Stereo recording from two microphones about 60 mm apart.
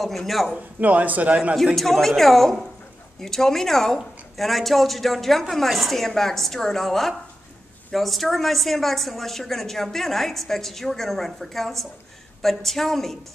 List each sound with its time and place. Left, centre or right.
0.0 s speech: centre
0.6 s a man's voice: right
1.8 s speech: centre